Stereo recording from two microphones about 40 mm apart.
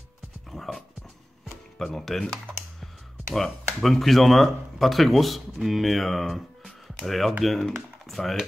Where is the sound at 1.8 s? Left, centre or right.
Centre.